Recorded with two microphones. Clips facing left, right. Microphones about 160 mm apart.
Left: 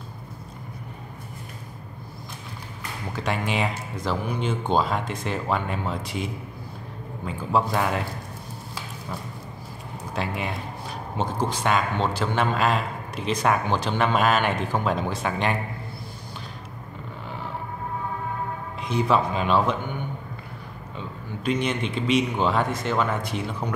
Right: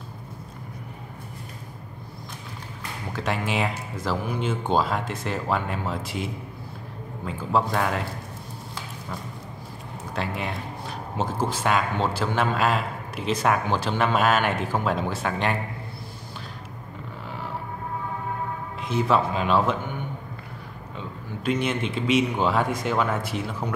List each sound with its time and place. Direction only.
3.2 s speech: centre (ahead or behind)
10.1 s speech: centre (ahead or behind)
18.8 s speech: centre (ahead or behind)
21.5 s speech: 5° right (ahead or behind)